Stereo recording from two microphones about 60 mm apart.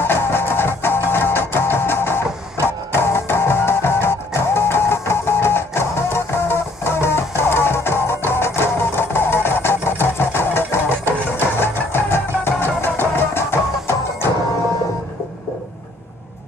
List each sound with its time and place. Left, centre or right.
0.0 s music: left